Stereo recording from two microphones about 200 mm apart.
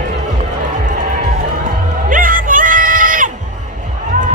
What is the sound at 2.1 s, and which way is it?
Music, 45° right (ahead or behind).